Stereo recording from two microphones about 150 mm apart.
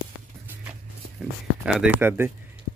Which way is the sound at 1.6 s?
5° right (ahead or behind).